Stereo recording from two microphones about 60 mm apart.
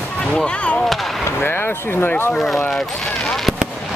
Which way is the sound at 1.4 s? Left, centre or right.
Left.